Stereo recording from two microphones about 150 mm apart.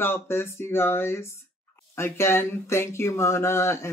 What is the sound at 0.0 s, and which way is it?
Speech, 15° left (ahead or behind).